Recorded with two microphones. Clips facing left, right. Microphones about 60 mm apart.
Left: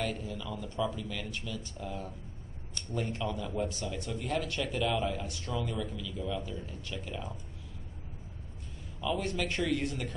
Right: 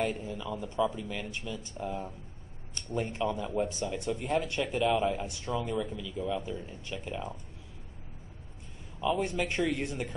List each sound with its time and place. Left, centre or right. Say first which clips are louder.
0.0 s speech: right 3 dB; right
9.0 s speech: right 3 dB; centre